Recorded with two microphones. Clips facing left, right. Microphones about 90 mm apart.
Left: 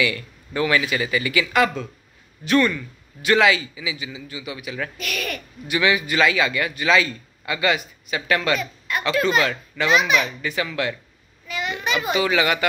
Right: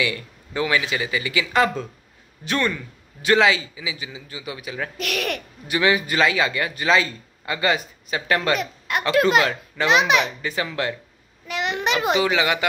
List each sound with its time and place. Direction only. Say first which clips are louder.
0.0 s a man's voice: left 2 dB; 20° right (ahead or behind)
4.9 s speech: right 3 dB; 70° right (ahead or behind)
5.7 s speech: even; 35° right (ahead or behind)
8.5 s speech: right 1 dB; 75° right (ahead or behind)
10.4 s speech: even; 30° right (ahead or behind)
11.4 s a sound: right 3 dB; 80° right
12.1 s a man's voice: left 1 dB; 20° right (ahead or behind)